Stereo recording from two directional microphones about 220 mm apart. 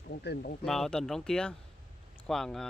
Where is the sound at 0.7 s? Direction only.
5° left (ahead or behind).